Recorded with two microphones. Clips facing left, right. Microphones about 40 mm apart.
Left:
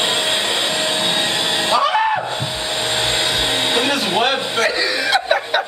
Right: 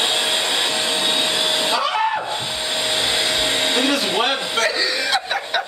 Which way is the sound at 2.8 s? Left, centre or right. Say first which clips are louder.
Left 1 dB; centre.